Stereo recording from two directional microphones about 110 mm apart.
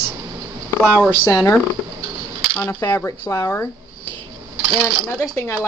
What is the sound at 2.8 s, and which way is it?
Speech, 30° left (ahead or behind).